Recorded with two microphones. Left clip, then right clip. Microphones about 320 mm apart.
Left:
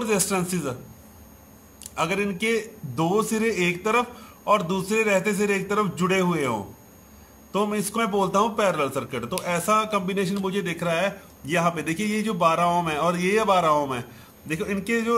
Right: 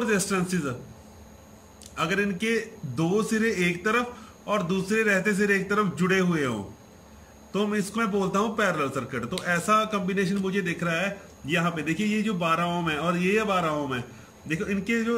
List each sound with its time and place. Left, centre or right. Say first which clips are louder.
0.0 s a man's voice: left 1 dB; centre
2.0 s a man's voice: left 1 dB; centre
7.5 s a man's voice: left 3 dB; centre